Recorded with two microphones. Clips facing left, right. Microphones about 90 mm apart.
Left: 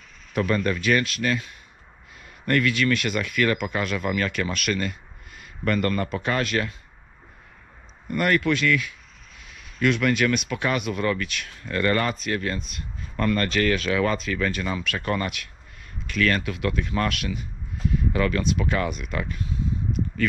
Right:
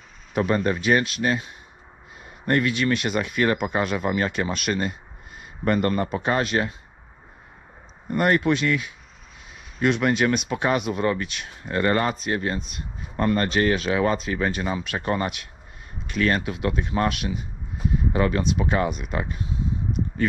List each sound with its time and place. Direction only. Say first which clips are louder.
0.3 s speech: right 1 dB; 30° right (ahead or behind)
8.1 s speech: right 2 dB; 25° right (ahead or behind)